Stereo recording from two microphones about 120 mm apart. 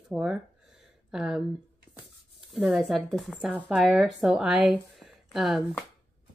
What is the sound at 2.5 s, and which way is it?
A woman's voice, 5° right (ahead or behind).